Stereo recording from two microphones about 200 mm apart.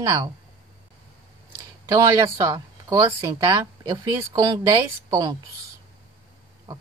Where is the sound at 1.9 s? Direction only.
15° right (ahead or behind).